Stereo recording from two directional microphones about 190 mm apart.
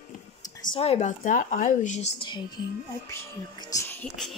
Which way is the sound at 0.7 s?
30° left (ahead or behind).